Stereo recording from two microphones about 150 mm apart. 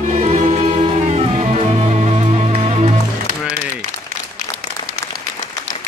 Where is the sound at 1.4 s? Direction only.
45° right (ahead or behind).